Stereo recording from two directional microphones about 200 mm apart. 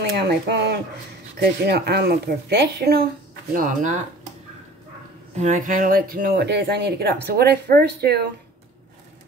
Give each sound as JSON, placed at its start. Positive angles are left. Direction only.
{"t": 0.3, "sound": "speech", "side_deg": -55}
{"t": 3.5, "sound": "speech", "side_deg": -40}
{"t": 5.3, "sound": "speech", "side_deg": -40}